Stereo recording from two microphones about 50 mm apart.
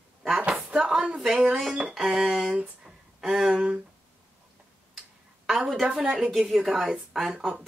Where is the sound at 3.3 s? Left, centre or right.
Centre.